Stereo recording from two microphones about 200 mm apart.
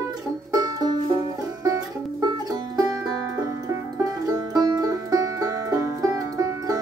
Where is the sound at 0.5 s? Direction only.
20° right (ahead or behind).